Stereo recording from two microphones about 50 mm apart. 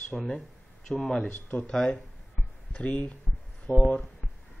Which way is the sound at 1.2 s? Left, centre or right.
Left.